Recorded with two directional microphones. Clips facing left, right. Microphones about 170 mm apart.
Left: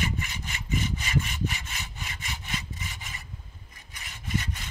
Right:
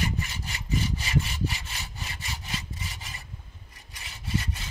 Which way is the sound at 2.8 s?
35° right (ahead or behind).